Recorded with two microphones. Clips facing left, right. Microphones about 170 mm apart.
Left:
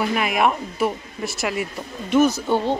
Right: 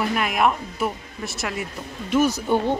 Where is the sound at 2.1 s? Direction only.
10° right (ahead or behind).